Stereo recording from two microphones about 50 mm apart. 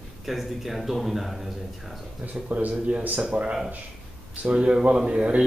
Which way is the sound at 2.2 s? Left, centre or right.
Right.